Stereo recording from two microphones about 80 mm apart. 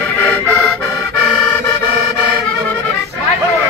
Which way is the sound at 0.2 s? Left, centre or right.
Left.